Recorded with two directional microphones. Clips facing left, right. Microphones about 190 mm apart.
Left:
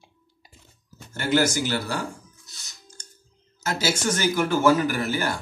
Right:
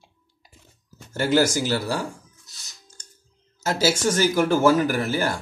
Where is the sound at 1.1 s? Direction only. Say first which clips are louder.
Right 2 dB; 40° right (ahead or behind).